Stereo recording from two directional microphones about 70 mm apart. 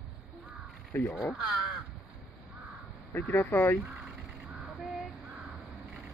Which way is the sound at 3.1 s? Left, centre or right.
Left.